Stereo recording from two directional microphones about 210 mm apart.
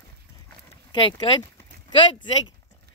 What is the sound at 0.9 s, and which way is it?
Speech, 20° left (ahead or behind).